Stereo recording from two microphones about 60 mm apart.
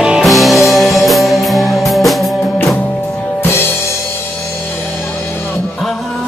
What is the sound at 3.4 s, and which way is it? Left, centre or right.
Music, left.